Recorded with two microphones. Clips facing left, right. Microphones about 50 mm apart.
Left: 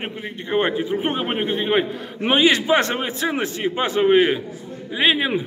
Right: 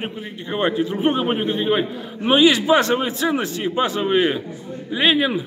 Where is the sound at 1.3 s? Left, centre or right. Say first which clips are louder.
Even; left; by 5.3 s centre.